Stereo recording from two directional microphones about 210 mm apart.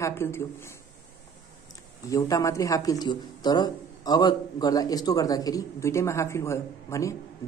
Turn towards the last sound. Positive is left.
turn(degrees=15)  # may be behind; listen again after turning